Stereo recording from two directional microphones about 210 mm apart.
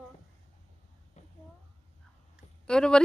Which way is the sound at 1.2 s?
30° left (ahead or behind).